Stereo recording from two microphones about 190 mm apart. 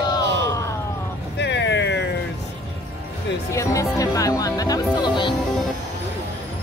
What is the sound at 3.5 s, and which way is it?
Speech, 15° left (ahead or behind).